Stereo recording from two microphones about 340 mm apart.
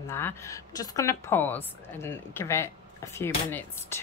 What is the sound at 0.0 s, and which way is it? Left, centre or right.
A woman's voice, centre.